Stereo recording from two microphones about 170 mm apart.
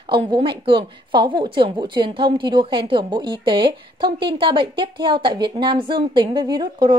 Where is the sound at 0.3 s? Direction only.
30° right (ahead or behind).